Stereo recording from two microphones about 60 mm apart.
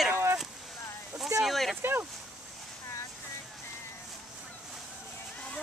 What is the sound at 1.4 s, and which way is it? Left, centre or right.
Speech, centre.